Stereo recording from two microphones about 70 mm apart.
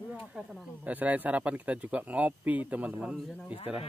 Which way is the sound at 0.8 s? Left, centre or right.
Right.